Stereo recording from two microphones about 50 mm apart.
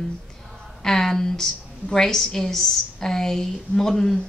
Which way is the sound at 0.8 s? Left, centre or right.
Centre.